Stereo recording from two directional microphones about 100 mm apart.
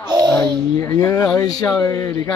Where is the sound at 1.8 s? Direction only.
25° left (ahead or behind).